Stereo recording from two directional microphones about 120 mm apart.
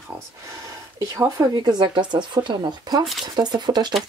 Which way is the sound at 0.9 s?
25° right (ahead or behind).